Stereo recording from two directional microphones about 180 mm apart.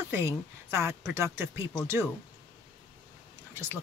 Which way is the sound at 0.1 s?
15° right (ahead or behind).